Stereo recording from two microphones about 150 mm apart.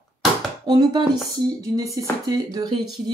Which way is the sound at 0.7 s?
25° right (ahead or behind).